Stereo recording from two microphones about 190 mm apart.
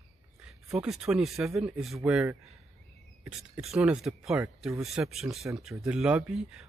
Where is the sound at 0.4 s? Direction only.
5° right (ahead or behind).